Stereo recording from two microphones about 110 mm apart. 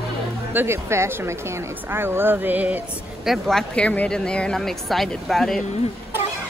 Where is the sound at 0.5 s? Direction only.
20° right (ahead or behind).